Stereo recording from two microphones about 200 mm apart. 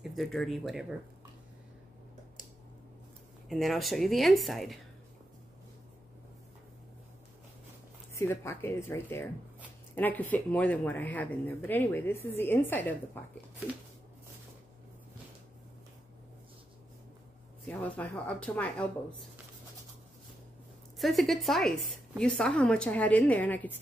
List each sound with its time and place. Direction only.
0.0 s a woman's voice: centre (ahead or behind)
3.4 s a woman's voice: centre (ahead or behind)
8.1 s speech: 15° left (ahead or behind)
17.6 s speech: 5° left (ahead or behind)
21.0 s a woman's voice: centre (ahead or behind)